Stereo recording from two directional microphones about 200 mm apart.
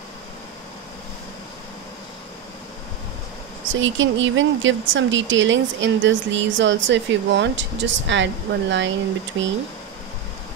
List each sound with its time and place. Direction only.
3.8 s speech: 70° right (ahead or behind)